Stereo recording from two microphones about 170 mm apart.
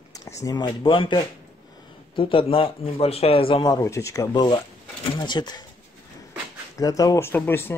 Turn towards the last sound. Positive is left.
turn(degrees=15)  # may be behind; listen again after turning